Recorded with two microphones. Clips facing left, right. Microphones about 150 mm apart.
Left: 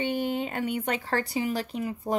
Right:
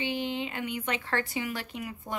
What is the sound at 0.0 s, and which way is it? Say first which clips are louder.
Speech: left 4 dB; 45° left (ahead or behind).